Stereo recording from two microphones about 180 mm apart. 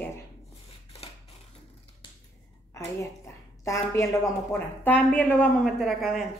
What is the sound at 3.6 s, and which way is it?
A woman's voice, 15° left (ahead or behind).